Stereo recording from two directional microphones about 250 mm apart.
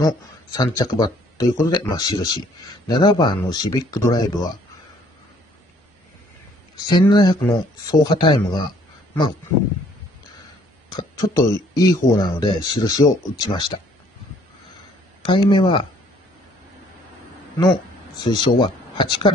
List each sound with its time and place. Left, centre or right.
0.0 s speech: centre
6.9 s speech: centre
10.9 s speech: centre
15.2 s speech: centre
18.2 s speech: centre